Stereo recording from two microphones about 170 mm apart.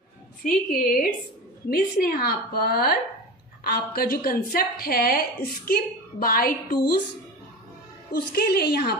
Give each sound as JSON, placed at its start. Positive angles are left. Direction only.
{"t": 0.4, "sound": "a woman's voice", "side_deg": 55}
{"t": 8.3, "sound": "a woman's voice", "side_deg": 65}